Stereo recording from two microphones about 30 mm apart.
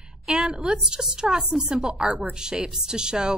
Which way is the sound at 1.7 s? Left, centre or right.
Centre.